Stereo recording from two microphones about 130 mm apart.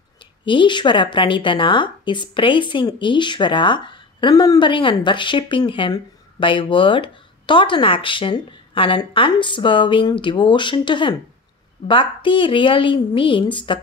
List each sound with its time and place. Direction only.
0.5 s a woman's voice: 40° left (ahead or behind)